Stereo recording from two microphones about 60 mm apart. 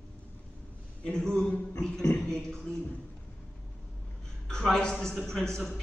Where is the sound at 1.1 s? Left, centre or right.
Centre.